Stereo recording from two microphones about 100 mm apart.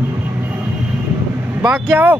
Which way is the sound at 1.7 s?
20° right (ahead or behind).